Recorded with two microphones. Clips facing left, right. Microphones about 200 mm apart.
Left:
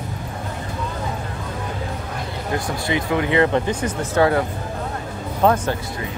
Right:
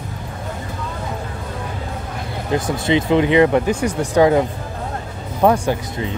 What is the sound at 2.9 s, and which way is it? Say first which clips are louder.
Speech: right 6 dB; 20° right (ahead or behind).